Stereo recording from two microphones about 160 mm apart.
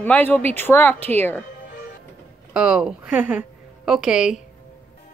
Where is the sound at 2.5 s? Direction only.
5° right (ahead or behind).